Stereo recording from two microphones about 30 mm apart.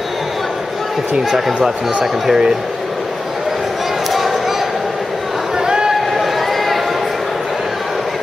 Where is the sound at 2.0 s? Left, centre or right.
Centre.